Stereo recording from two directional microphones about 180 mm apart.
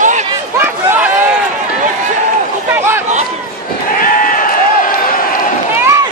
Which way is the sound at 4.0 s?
50° left (ahead or behind).